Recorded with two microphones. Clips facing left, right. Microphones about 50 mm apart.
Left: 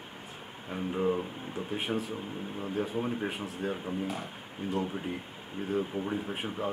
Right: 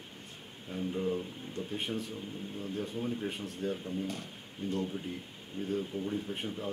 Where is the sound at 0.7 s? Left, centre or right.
Left.